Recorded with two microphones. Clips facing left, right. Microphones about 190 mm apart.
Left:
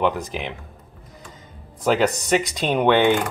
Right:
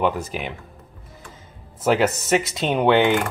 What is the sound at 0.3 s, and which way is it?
Speech, 5° right (ahead or behind).